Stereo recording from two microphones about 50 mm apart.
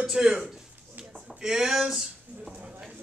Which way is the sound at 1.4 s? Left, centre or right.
Centre.